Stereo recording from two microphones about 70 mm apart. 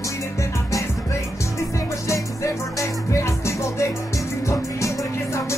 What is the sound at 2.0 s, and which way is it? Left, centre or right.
Music, left.